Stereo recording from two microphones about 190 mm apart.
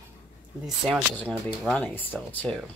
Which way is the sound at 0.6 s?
Centre (ahead or behind).